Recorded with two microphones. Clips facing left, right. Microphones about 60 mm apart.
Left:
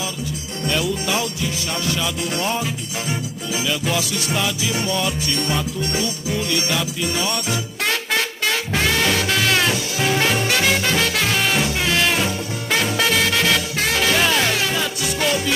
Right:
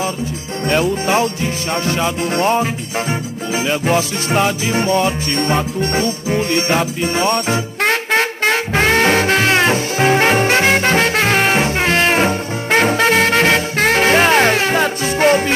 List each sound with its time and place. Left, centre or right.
0.7 s music: right